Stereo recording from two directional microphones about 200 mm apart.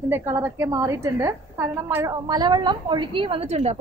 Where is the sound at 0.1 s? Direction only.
10° right (ahead or behind).